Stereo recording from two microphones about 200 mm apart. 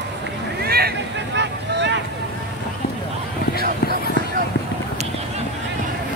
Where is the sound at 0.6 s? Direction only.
50° right (ahead or behind).